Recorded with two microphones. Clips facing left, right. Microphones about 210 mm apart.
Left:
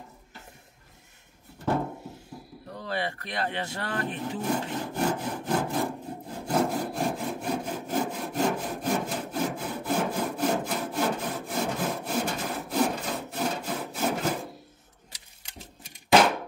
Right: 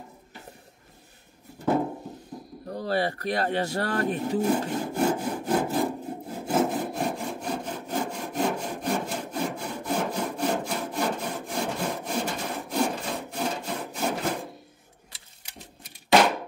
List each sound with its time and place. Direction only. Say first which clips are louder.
2.7 s speech: right 5 dB; 40° right (ahead or behind)
4.6 s wood: right 3 dB; 10° right (ahead or behind)
15.4 s a sound: even; 5° right (ahead or behind)